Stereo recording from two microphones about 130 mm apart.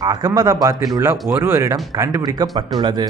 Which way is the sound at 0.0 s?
30° right (ahead or behind).